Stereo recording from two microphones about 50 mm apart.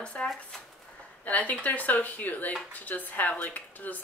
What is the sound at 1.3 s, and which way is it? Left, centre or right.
Speech, left.